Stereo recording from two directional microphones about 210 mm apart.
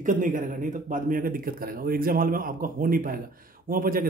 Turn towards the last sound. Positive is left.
turn(degrees=-40)  # may be behind; listen again after turning